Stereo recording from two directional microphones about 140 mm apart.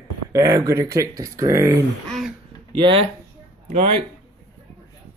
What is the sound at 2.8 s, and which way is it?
Speech, 40° right (ahead or behind).